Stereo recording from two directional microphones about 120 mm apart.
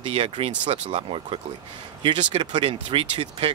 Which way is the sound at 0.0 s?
50° right (ahead or behind).